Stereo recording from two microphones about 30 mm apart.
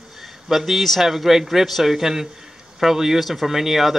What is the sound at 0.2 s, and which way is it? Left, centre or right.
A man's voice, centre.